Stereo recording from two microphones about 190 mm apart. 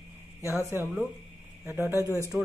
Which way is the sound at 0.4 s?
15° left (ahead or behind).